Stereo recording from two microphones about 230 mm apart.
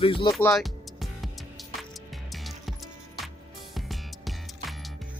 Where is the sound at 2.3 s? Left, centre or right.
Centre.